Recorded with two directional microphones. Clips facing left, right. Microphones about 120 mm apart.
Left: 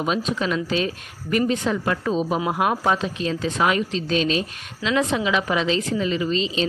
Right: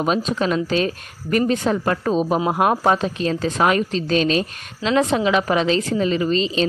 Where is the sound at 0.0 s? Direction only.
40° right (ahead or behind).